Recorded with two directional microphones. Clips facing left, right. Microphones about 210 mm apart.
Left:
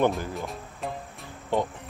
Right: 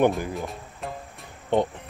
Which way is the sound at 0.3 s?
Centre (ahead or behind).